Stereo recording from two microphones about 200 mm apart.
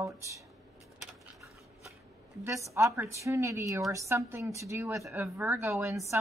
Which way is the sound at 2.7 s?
15° right (ahead or behind).